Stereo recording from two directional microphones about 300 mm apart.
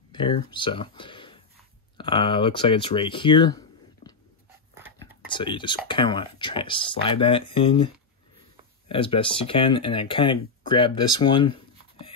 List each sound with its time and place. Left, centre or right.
0.1 s speech: centre
4.7 s whispering: centre
5.3 s speech: centre